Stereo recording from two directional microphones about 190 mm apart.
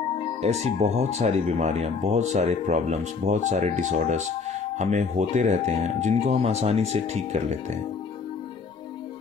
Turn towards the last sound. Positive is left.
turn(degrees=-35)  # may be behind; listen again after turning